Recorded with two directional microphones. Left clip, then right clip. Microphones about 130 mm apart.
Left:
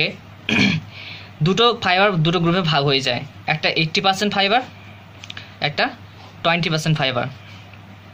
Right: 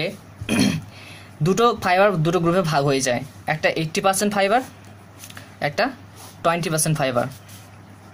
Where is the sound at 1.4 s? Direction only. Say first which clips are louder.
Left 2 dB; 65° right (ahead or behind).